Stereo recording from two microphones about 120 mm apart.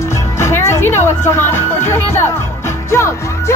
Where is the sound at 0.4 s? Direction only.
20° left (ahead or behind).